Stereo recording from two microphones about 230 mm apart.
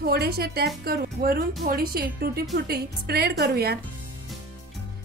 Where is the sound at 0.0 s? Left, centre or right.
Right.